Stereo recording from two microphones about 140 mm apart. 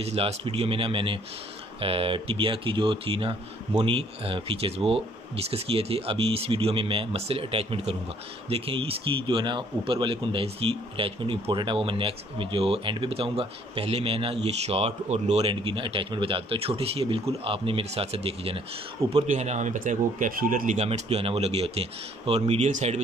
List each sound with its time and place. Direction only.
0.0 s speech: 45° right (ahead or behind)
19.2 s speech: 55° right (ahead or behind); by 20.7 s 80° right
20.7 s speech: 50° right (ahead or behind)